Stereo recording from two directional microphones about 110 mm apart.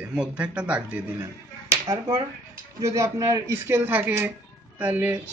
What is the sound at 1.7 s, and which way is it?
A man's voice, 30° right (ahead or behind).